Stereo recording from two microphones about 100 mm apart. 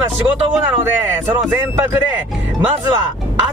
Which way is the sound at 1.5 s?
20° right (ahead or behind).